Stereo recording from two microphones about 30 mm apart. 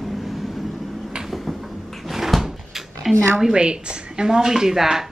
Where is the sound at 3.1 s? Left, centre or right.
Centre.